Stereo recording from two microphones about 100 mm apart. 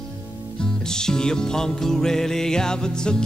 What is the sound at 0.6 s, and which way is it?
Music, 5° left (ahead or behind).